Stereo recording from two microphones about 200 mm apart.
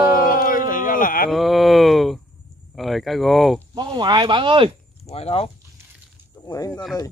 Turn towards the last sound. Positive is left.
turn(degrees=0)  # may be behind; listen again after turning